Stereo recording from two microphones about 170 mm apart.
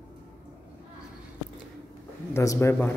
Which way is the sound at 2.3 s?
20° left (ahead or behind).